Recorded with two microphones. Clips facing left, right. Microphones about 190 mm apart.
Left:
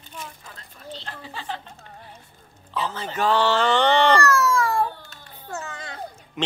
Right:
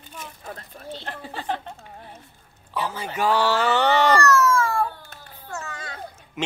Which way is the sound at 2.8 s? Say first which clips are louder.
Even; 10° right (ahead or behind).